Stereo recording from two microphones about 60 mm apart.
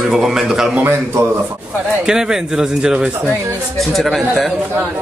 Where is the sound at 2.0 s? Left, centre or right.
Centre.